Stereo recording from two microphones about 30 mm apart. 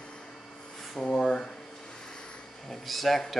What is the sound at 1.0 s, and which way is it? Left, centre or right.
Speech, centre.